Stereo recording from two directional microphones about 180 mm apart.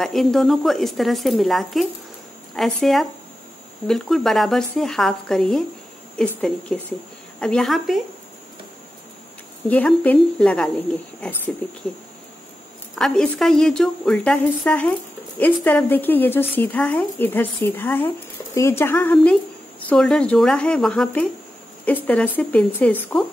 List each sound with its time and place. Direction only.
0.0 s speech: centre (ahead or behind)
7.3 s speech: 5° left (ahead or behind)
9.7 s a woman's voice: 10° left (ahead or behind)
12.9 s a woman's voice: centre (ahead or behind)